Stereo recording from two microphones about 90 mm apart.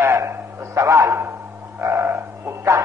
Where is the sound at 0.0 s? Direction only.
30° right (ahead or behind).